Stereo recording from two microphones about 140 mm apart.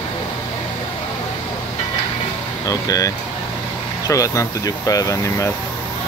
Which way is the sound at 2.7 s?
25° left (ahead or behind).